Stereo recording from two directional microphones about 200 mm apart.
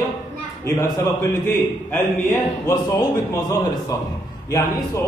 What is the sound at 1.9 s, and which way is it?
Speech, 10° left (ahead or behind).